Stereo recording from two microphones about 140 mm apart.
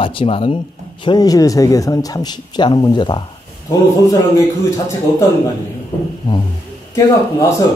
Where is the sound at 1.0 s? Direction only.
30° left (ahead or behind).